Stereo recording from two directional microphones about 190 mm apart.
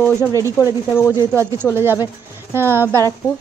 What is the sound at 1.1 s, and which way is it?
Speech, 15° right (ahead or behind).